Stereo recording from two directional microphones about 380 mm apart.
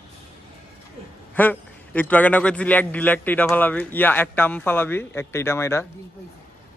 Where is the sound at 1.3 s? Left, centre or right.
Centre.